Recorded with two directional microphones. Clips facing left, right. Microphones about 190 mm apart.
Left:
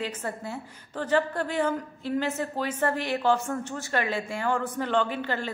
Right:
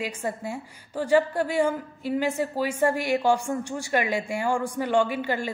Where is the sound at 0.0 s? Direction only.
10° right (ahead or behind).